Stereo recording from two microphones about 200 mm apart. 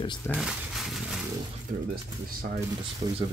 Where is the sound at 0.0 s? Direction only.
25° left (ahead or behind).